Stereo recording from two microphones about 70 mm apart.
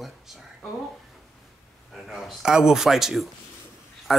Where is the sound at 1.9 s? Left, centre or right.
Centre.